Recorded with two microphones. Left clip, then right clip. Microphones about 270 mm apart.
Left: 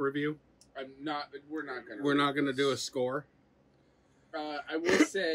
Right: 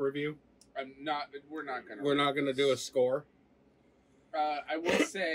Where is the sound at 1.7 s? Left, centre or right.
Centre.